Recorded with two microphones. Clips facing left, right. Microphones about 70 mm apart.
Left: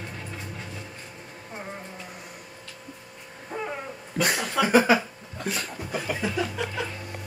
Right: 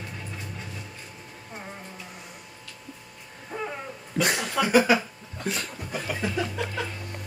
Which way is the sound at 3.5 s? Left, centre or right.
Centre.